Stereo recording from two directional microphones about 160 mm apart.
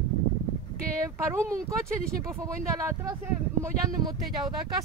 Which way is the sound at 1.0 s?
15° right (ahead or behind).